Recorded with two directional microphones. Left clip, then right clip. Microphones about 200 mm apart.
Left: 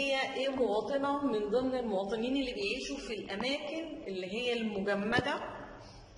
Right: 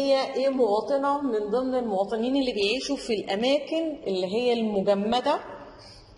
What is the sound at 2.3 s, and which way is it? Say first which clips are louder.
A woman's voice: right 9 dB; 30° right (ahead or behind).